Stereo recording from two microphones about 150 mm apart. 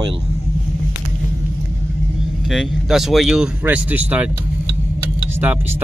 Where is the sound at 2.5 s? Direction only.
Centre (ahead or behind).